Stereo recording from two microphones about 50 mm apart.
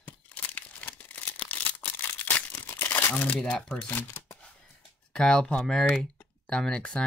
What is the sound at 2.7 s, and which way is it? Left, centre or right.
Crumpling, left.